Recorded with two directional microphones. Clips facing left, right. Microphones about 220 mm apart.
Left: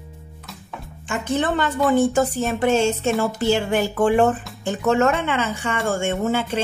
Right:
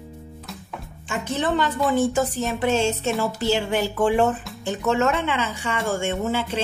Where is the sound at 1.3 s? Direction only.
55° left (ahead or behind).